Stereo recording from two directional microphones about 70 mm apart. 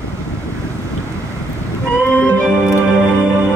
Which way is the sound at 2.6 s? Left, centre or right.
Left.